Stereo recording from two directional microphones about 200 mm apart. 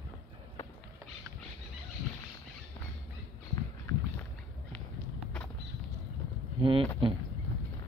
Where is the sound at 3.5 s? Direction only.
15° left (ahead or behind).